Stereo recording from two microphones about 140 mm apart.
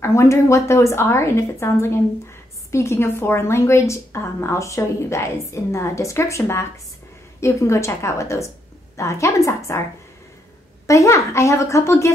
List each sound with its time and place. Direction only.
0.0 s a woman's voice: 20° left (ahead or behind)
10.9 s a woman's voice: 20° left (ahead or behind)